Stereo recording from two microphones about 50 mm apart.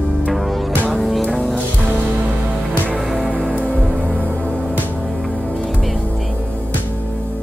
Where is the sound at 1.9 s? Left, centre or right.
Right.